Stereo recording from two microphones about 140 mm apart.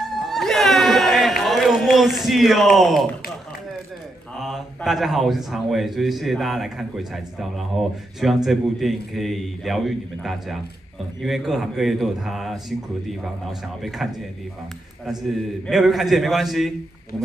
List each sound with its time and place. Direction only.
0.0 s a sound: centre (ahead or behind)
4.4 s a man's voice: centre (ahead or behind)
15.0 s a man's voice: centre (ahead or behind)